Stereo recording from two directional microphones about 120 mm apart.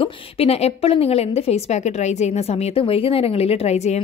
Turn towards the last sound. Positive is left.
turn(degrees=60)  # may be behind; listen again after turning